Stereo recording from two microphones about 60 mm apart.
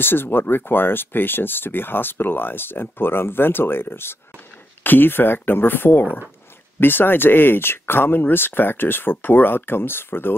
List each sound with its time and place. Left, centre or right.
0.0 s speech: left